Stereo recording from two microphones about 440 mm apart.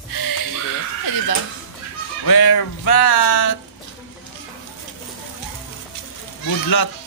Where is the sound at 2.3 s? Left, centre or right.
Left.